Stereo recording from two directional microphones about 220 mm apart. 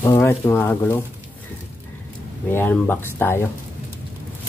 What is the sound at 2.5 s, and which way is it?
Speech, 10° left (ahead or behind).